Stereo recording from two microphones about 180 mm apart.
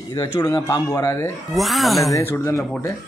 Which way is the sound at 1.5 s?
Centre (ahead or behind).